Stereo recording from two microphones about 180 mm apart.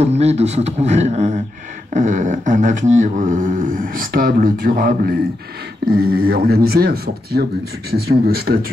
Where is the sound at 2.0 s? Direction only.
45° right (ahead or behind).